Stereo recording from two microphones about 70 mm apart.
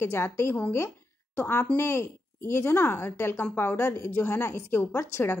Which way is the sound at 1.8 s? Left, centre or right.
Left.